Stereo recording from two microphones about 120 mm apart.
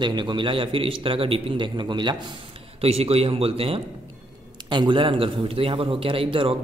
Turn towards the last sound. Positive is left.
turn(degrees=-50)  # may be behind; listen again after turning